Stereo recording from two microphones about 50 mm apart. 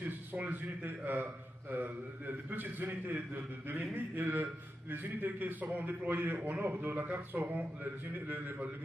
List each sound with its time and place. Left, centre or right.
0.0 s a man's voice: right